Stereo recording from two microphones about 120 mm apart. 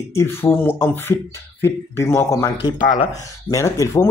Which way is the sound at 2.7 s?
90° left.